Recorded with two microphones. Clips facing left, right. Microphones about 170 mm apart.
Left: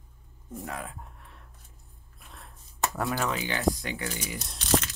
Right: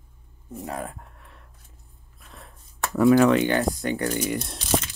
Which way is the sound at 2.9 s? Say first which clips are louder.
Right 16 dB; centre (ahead or behind).